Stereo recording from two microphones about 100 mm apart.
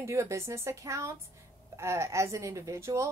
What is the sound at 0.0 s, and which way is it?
A man's voice, 30° right (ahead or behind).